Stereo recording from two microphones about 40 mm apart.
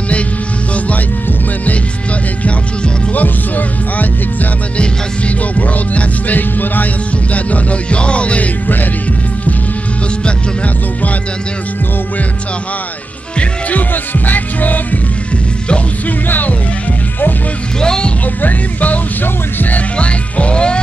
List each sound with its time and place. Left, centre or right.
3.1 s music: left
5.6 s music: left
7.3 s music: left
13.4 s music: left
16.3 s music: left
17.7 s music: centre
18.4 s music: left
20.0 s music: left